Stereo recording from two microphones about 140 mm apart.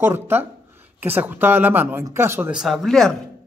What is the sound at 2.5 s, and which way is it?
Speech, centre (ahead or behind).